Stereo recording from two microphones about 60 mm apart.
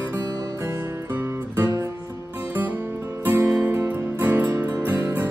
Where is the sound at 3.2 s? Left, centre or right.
Right.